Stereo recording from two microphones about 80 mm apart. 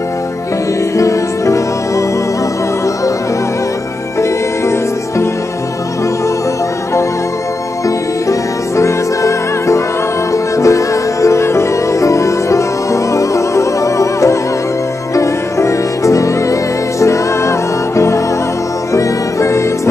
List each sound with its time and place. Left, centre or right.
0.9 s music: left
7.8 s music: left